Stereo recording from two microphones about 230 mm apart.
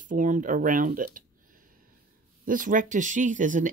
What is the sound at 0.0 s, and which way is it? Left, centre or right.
Speech, right.